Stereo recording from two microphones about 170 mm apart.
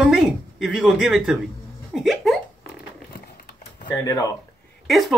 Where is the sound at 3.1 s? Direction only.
60° left (ahead or behind).